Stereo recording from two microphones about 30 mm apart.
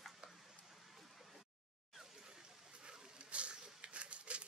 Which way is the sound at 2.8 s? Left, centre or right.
Right.